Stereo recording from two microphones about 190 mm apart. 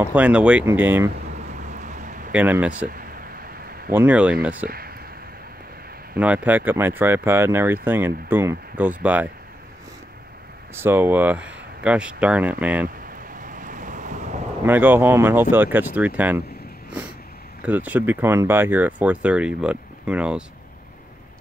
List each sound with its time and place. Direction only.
0.0 s speech: 5° right (ahead or behind)
1.5 s a sound: 40° right (ahead or behind)
2.3 s speech: 10° right (ahead or behind)
3.9 s speech: 10° right (ahead or behind)
4.6 s a sound: 50° right (ahead or behind)
6.1 s speech: 5° right (ahead or behind)
10.7 s speech: 10° right (ahead or behind)
13.4 s waves: 45° right (ahead or behind)
14.7 s speech: 10° right (ahead or behind)
17.6 s speech: 10° right (ahead or behind)